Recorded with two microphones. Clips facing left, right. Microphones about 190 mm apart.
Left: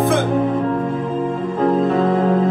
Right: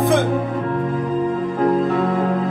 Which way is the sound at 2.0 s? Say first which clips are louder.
Left 3 dB; 30° left (ahead or behind).